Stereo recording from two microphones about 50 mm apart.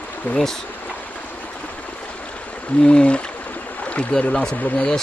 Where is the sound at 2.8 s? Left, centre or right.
Left.